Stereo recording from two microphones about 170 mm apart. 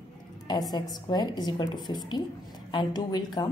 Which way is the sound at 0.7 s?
25° left (ahead or behind).